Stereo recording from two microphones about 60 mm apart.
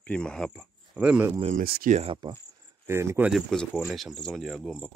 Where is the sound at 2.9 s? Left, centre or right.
Right.